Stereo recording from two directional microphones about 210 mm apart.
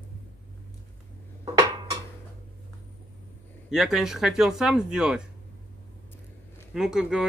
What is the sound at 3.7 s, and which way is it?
Speech, centre (ahead or behind).